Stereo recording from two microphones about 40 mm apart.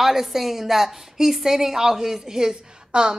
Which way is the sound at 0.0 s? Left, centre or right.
Centre.